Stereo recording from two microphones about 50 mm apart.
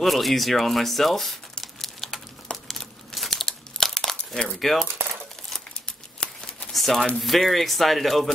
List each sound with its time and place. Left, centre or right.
0.0 s speech: centre
1.6 s crumpling: centre
4.6 s speech: centre
5.9 s a sound: centre
6.7 s a sound: centre
7.2 s speech: centre